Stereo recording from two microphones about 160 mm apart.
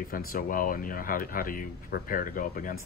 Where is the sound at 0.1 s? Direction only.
65° left (ahead or behind).